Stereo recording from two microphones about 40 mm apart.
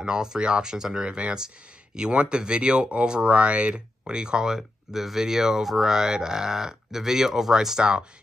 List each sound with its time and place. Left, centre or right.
0.0 s speech: centre
4.6 s speech: centre